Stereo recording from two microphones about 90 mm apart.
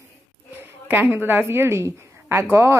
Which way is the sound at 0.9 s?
20° right (ahead or behind).